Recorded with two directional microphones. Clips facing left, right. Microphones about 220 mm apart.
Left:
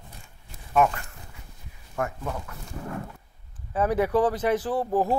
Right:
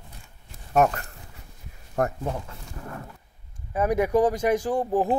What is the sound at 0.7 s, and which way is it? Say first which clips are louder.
Speech: right 1 dB; 45° right (ahead or behind).